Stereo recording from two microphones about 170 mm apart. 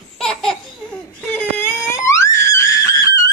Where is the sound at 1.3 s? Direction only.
10° left (ahead or behind).